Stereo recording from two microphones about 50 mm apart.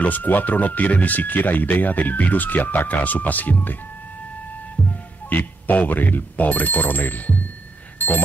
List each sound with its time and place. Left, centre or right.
0.0 s speech: left
5.3 s speech: left